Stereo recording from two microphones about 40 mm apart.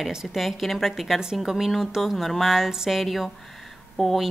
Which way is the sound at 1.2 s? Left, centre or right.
Centre.